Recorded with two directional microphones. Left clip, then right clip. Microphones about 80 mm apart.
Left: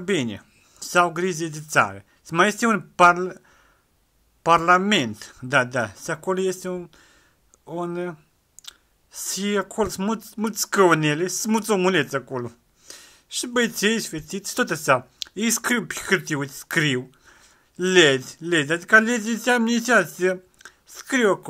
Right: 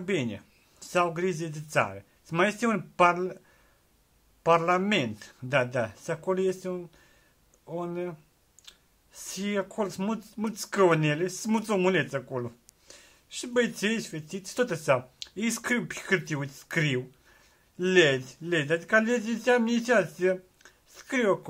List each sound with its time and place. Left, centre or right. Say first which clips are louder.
0.0 s speech: left 6 dB; left